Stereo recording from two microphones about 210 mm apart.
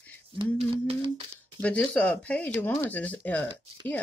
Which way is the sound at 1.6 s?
5° left (ahead or behind).